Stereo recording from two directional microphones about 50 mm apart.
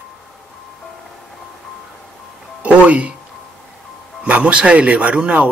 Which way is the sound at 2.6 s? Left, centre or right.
Right.